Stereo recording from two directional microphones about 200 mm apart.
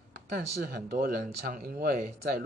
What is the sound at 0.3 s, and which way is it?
Speech, 45° right (ahead or behind).